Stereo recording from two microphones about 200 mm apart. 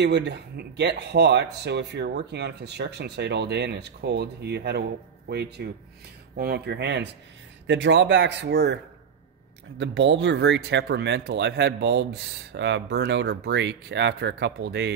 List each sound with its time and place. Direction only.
0.0 s speech: 60° right (ahead or behind)
9.8 s speech: 60° right (ahead or behind)